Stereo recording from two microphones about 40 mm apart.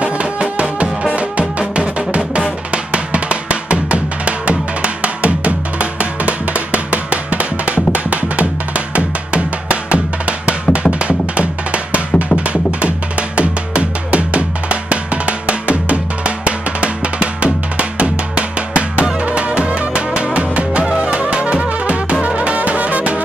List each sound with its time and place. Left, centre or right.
0.0 s music: right
13.4 s drum: right
19.2 s music: right